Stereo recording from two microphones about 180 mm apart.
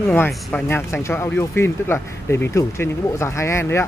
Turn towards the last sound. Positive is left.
turn(degrees=15)  # may be behind; listen again after turning